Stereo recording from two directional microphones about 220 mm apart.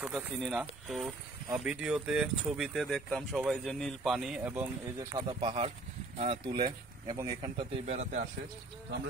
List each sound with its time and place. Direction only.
0.0 s speech: centre (ahead or behind)
5.1 s speech: 20° right (ahead or behind)